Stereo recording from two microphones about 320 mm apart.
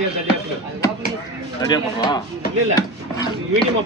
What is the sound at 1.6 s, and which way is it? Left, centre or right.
Speech, centre.